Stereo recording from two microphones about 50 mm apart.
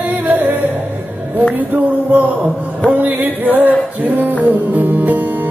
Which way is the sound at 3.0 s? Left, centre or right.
Right.